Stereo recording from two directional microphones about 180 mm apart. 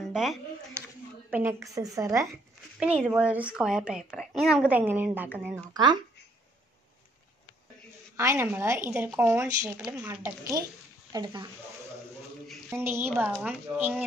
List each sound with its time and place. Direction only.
0.1 s speech: centre (ahead or behind)
1.3 s a woman's voice: 15° right (ahead or behind)
3.1 s a woman's voice: 5° right (ahead or behind)
5.7 s speech: 25° right (ahead or behind)
8.2 s a woman's voice: 15° right (ahead or behind)
12.7 s a woman's voice: 15° right (ahead or behind)